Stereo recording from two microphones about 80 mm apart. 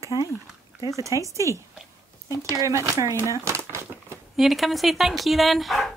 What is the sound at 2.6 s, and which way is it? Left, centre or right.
Speech, right.